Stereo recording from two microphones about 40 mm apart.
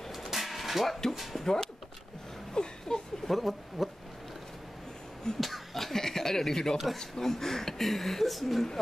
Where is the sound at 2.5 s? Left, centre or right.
Centre.